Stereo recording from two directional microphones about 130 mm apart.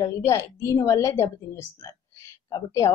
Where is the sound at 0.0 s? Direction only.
20° left (ahead or behind).